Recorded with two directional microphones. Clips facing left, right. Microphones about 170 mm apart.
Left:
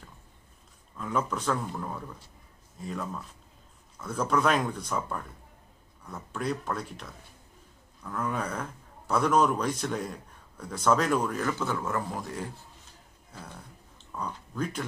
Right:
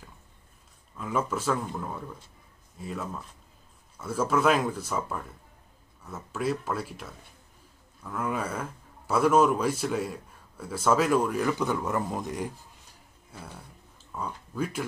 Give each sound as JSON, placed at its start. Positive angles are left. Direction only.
{"t": 0.9, "sound": "a man's voice", "side_deg": -5}
{"t": 14.1, "sound": "speech", "side_deg": -10}